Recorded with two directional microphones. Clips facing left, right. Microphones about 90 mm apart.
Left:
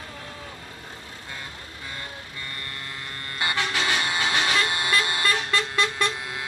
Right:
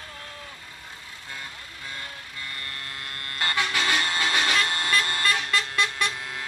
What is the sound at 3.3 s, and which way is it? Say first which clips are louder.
Vehicle: left 1 dB; 15° left (ahead or behind).